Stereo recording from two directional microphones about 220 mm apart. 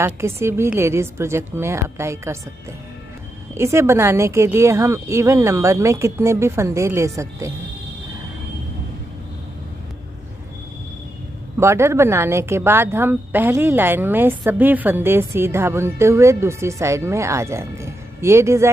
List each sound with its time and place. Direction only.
0.0 s speech: 10° right (ahead or behind)
3.5 s speech: 10° right (ahead or behind)
11.5 s speech: 10° right (ahead or behind)